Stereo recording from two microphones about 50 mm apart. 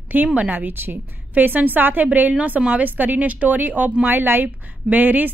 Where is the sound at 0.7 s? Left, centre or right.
Right.